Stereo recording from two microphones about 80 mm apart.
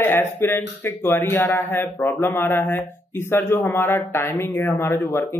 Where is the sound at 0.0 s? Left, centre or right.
Left.